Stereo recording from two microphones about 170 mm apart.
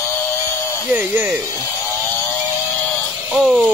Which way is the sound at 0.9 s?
10° right (ahead or behind).